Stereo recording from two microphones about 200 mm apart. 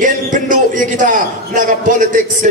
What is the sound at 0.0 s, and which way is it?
A man's voice, 40° right (ahead or behind).